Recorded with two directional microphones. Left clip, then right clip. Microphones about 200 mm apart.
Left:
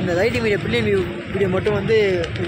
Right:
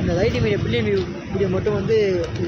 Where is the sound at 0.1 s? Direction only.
Centre (ahead or behind).